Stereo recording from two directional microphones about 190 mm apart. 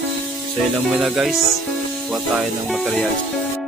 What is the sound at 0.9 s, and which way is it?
Speech, centre (ahead or behind).